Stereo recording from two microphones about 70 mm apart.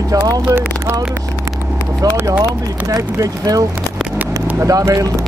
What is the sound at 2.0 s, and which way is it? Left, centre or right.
Speech, right.